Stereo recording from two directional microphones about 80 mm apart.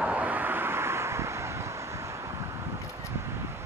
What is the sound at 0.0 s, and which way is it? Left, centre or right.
Vehicle, centre.